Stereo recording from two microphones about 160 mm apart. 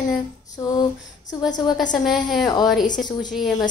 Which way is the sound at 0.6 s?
25° left (ahead or behind).